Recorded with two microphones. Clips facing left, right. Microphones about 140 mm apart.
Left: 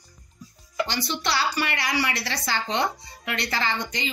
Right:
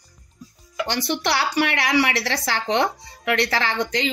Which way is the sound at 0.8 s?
65° right (ahead or behind).